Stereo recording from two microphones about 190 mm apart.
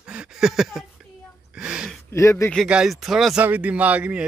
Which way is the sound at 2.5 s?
Centre (ahead or behind).